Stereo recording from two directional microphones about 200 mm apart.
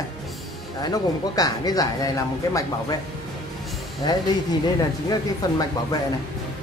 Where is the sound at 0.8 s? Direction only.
20° left (ahead or behind).